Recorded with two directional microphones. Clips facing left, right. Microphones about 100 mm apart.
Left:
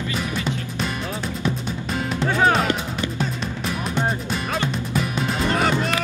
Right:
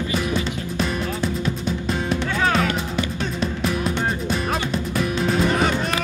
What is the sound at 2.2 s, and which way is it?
Music, 35° left (ahead or behind).